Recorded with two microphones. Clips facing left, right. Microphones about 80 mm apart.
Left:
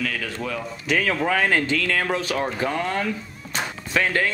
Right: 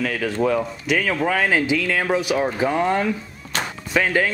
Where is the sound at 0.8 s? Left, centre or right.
Centre.